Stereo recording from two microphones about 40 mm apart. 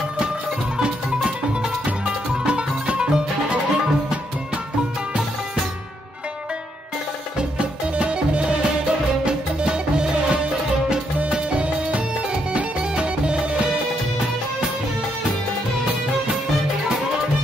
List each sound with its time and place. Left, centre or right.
0.7 s music: centre
7.3 s music: right